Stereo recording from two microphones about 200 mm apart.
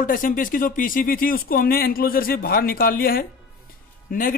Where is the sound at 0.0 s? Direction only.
45° left (ahead or behind).